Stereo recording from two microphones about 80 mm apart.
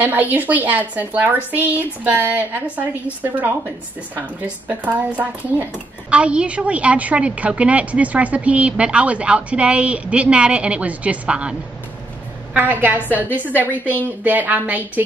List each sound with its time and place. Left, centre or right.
0.0 s a woman's voice: right
12.5 s a woman's voice: right
13.1 s a woman's voice: left
14.2 s a woman's voice: right